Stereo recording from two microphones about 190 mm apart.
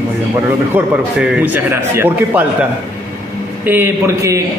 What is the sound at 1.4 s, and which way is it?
A man's voice, 10° right (ahead or behind).